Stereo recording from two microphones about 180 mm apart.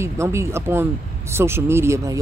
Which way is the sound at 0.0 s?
15° right (ahead or behind).